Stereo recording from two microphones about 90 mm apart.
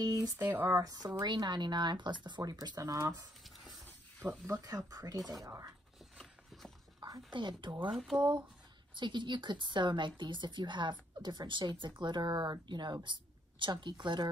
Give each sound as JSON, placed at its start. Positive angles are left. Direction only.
{"t": 0.0, "sound": "speech", "side_deg": -45}
{"t": 0.4, "sound": "speech", "side_deg": -20}
{"t": 0.7, "sound": "speech", "side_deg": -45}
{"t": 4.5, "sound": "speech", "side_deg": -45}
{"t": 6.1, "sound": "a sound", "side_deg": 5}
{"t": 7.0, "sound": "a sound", "side_deg": -55}
{"t": 7.3, "sound": "speech", "side_deg": -60}
{"t": 7.9, "sound": "speech", "side_deg": 0}
{"t": 8.9, "sound": "speech", "side_deg": -60}